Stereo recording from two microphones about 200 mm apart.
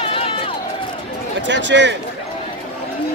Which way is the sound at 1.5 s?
65° right (ahead or behind).